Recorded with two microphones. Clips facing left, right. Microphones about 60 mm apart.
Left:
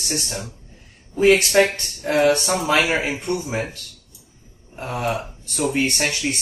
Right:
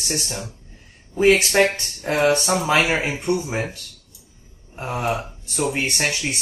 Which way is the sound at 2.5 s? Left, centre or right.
Centre.